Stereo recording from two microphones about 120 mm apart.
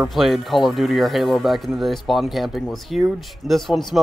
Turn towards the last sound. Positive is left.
turn(degrees=0)  # may be behind; listen again after turning